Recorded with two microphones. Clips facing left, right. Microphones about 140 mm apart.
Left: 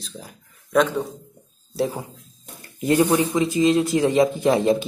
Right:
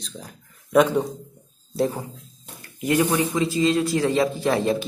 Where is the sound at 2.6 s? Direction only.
30° left (ahead or behind).